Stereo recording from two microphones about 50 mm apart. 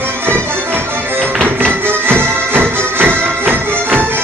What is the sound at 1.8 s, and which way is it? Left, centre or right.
Music, right.